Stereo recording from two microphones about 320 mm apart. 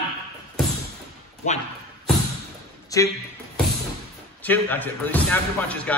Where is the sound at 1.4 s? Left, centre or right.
Left.